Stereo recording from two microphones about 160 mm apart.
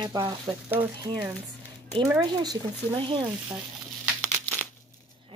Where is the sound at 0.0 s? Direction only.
25° right (ahead or behind).